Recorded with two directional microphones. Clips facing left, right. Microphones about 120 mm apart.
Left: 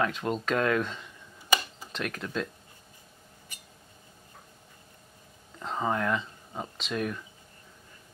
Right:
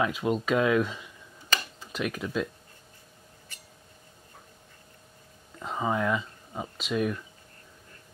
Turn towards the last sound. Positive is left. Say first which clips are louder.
# right 4 dB
turn(degrees=0)  # may be behind; listen again after turning